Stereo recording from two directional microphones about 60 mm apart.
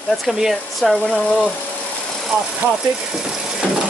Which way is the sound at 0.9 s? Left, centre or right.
Centre.